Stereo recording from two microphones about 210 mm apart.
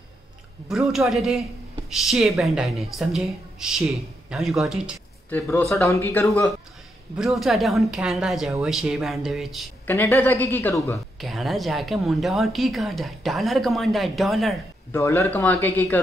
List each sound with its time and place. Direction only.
0.7 s speech: centre (ahead or behind)
5.3 s a woman's voice: 10° left (ahead or behind)
7.2 s speech: centre (ahead or behind)
9.8 s a woman's voice: 10° left (ahead or behind)
11.1 s speech: centre (ahead or behind)
14.9 s a woman's voice: 15° left (ahead or behind)